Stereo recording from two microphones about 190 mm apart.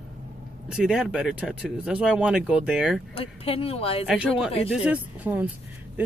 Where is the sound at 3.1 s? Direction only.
30° left (ahead or behind).